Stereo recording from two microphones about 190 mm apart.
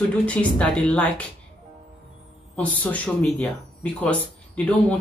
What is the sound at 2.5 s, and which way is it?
Speech, 5° left (ahead or behind).